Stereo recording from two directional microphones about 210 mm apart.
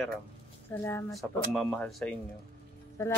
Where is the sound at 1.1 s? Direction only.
Centre (ahead or behind).